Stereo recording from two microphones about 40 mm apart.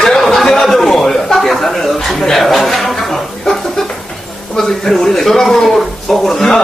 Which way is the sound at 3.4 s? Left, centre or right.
Centre.